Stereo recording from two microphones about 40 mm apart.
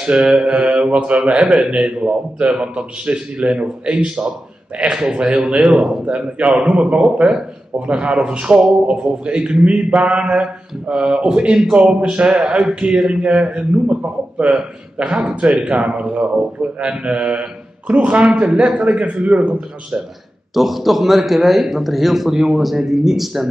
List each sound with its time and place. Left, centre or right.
0.0 s speech: right
5.7 s speech: centre
6.0 s speech: right
9.4 s speech: centre
9.8 s speech: right; by 13.6 s centre
15.0 s a man's voice: right
20.5 s a man's voice: centre